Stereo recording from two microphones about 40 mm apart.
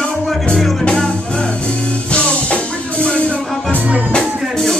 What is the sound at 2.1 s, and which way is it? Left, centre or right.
Music, left.